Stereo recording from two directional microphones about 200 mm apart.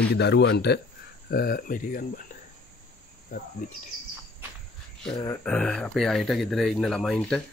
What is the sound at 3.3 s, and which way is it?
Speech, 45° left (ahead or behind).